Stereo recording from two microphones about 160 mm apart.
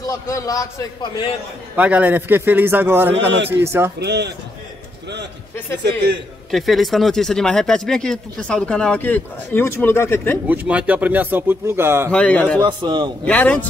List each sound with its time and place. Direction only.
0.0 s a man's voice: 20° left (ahead or behind)
1.8 s speech: 10° right (ahead or behind)
3.3 s a man's voice: 90° right
3.6 s speech: 15° right (ahead or behind)
4.0 s a man's voice: 90° right
6.5 s speech: centre (ahead or behind)
10.4 s speech: 10° right (ahead or behind)
12.1 s a man's voice: 10° left (ahead or behind)
12.5 s a man's voice: 30° right (ahead or behind)
13.2 s a man's voice: 10° left (ahead or behind)